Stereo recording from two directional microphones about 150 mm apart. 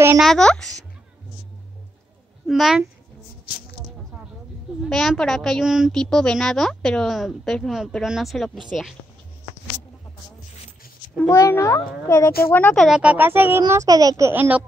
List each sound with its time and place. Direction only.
0.2 s speech: 5° left (ahead or behind)
2.4 s speech: centre (ahead or behind)
4.8 s speech: centre (ahead or behind)
11.1 s a child's voice: 20° left (ahead or behind)
12.8 s a child's voice: 5° right (ahead or behind)